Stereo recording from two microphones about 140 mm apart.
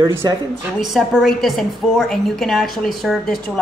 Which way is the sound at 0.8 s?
Centre (ahead or behind).